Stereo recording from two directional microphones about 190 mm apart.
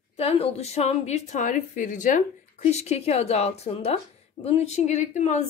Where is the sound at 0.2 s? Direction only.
30° left (ahead or behind).